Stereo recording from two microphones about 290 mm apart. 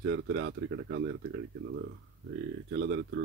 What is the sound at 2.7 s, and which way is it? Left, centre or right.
Speech, right.